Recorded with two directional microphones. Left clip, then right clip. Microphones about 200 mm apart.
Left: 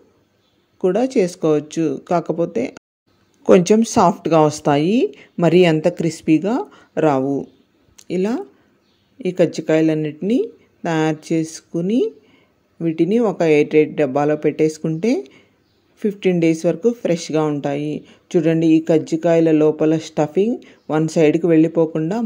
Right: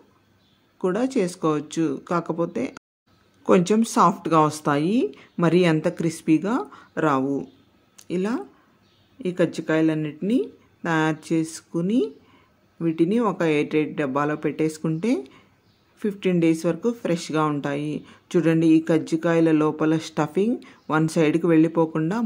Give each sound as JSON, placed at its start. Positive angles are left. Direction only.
{"t": 0.7, "sound": "speech", "side_deg": 15}